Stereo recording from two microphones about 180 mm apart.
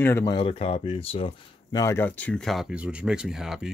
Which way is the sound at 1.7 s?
15° left (ahead or behind).